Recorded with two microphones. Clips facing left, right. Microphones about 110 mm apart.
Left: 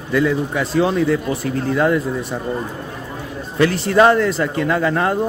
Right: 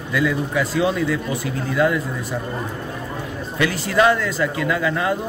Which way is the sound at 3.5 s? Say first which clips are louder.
Left 5 dB; 35° left (ahead or behind).